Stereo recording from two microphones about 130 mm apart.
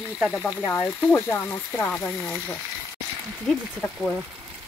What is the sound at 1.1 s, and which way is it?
Speech, 15° left (ahead or behind).